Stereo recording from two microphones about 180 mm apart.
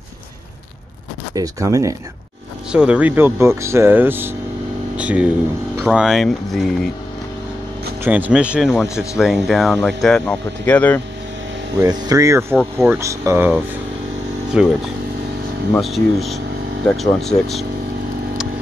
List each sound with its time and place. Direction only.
1.3 s speech: 20° right (ahead or behind)
2.7 s speech: 5° right (ahead or behind)
8.0 s speech: 10° right (ahead or behind); by 11.0 s 10° left (ahead or behind)
11.8 s speech: 20° right (ahead or behind)
12.5 s speech: centre (ahead or behind)
12.9 s speech: 15° right (ahead or behind)
15.8 s speech: centre (ahead or behind)